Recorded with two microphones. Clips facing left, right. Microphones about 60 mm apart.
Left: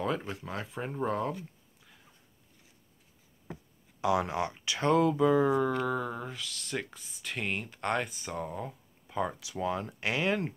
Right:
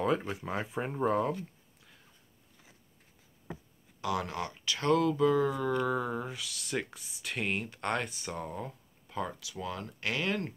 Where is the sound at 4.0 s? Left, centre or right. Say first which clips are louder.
Left 5 dB; left.